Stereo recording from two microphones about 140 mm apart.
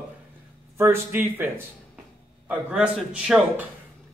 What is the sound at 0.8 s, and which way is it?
Speech, 15° right (ahead or behind).